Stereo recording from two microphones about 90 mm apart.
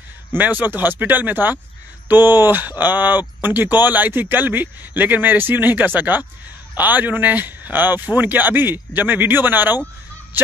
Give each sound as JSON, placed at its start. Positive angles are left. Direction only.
{"t": 0.3, "sound": "speech", "side_deg": -20}